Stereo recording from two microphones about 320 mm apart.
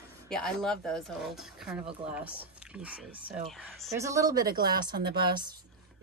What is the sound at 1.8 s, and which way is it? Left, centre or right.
Speech, centre.